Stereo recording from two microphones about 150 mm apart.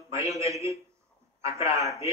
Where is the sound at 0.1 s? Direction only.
20° right (ahead or behind).